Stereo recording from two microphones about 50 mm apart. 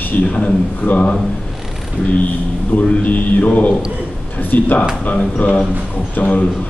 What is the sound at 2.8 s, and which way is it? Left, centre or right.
A man's voice, left.